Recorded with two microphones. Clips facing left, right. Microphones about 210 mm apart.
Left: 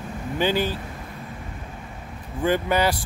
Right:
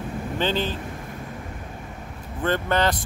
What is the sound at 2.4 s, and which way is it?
Speech, 10° left (ahead or behind).